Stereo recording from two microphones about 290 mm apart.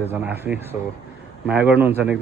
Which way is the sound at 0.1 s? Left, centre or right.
Centre.